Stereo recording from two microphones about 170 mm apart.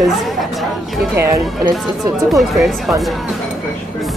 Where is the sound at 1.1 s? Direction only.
15° right (ahead or behind).